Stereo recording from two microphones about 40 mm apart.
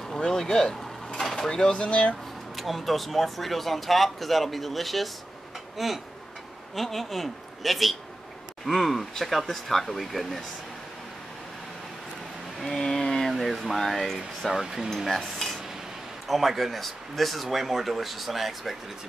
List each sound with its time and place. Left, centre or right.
0.1 s a sound: centre
1.5 s speech: left
1.9 s speech: left
2.5 s speech: centre
12.5 s a sound: centre
12.8 s speech: centre
14.1 s speech: centre
15.0 s dishes: centre
16.3 s speech: centre